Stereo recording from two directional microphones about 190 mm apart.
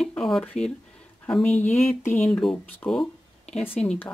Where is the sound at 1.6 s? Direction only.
40° left (ahead or behind).